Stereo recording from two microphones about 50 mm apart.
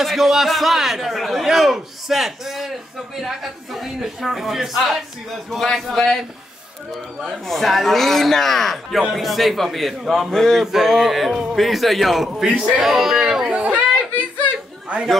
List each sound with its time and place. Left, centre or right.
0.0 s a man's voice: centre
7.2 s a man's voice: centre
10.3 s a sound: centre
10.6 s a man's voice: centre
12.3 s a man's voice: centre
13.5 s chatter: right